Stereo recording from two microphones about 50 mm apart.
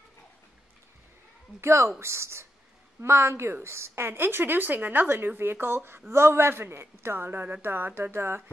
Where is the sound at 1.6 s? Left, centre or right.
Right.